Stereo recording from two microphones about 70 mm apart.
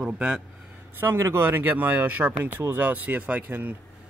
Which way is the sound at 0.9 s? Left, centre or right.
Right.